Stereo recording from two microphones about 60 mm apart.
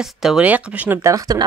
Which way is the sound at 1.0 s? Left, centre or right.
Right.